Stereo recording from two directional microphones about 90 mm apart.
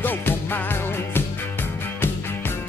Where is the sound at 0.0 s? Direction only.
20° left (ahead or behind).